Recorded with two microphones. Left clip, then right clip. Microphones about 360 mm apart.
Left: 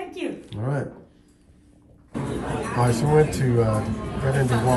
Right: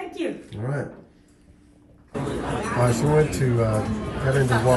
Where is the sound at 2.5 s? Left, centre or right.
Centre.